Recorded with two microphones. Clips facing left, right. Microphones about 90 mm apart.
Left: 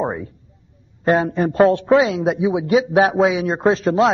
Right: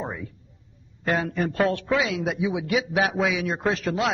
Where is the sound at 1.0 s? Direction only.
30° left (ahead or behind).